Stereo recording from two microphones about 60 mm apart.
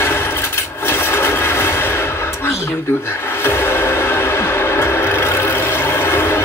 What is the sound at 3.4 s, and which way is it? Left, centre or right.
Music, left.